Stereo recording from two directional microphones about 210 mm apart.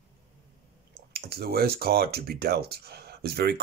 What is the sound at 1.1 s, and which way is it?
Speech, 50° right (ahead or behind).